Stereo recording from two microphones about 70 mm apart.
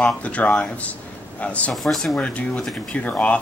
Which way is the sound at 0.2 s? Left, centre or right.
Left.